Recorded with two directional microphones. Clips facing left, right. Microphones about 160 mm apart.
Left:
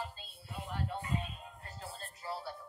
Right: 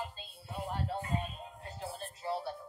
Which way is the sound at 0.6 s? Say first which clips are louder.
Right 3 dB; 35° right (ahead or behind).